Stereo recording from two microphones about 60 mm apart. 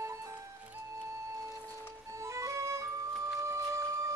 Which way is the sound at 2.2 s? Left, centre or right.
Right.